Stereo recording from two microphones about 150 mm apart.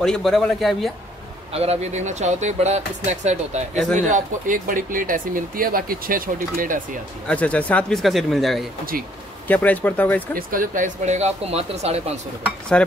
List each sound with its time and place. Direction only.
0.0 s speech: centre (ahead or behind)
1.5 s speech: 40° right (ahead or behind); by 7.0 s 65° right (ahead or behind)
7.2 s speech: 10° left (ahead or behind)
8.9 s speech: 75° right (ahead or behind)
9.5 s speech: 10° left (ahead or behind)
10.3 s speech: 65° right (ahead or behind); by 12.0 s 45° right (ahead or behind)
12.7 s dishes: 5° left (ahead or behind)